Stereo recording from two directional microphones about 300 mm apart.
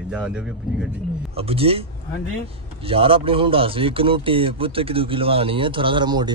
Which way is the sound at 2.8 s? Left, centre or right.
Centre.